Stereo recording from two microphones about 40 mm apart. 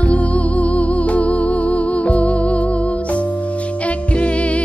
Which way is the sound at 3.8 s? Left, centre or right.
Left.